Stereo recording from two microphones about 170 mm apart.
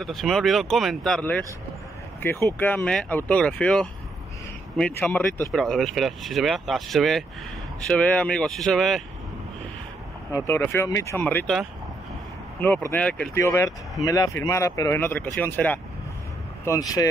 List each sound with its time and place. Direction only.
0.0 s speech: centre (ahead or behind)
2.6 s speech: 10° left (ahead or behind)
10.3 s speech: 15° left (ahead or behind)